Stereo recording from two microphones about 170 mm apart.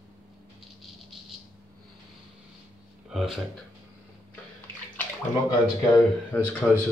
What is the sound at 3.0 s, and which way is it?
Speech, centre (ahead or behind).